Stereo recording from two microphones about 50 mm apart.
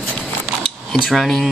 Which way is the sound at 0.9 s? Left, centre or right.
Centre.